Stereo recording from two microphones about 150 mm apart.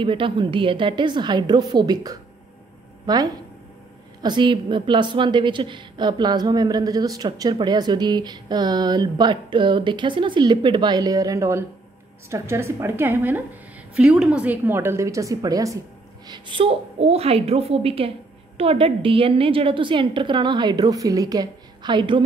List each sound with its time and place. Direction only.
0.0 s a woman's voice: 35° right (ahead or behind)
16.3 s a woman's voice: 35° right (ahead or behind)